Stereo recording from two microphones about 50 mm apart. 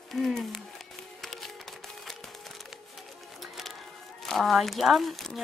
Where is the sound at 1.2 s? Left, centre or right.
Centre.